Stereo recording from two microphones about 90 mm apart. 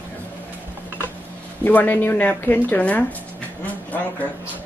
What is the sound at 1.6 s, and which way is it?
A woman's voice, 20° left (ahead or behind).